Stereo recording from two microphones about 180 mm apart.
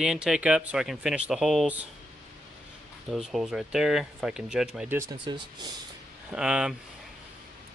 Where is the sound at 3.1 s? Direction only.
Centre (ahead or behind).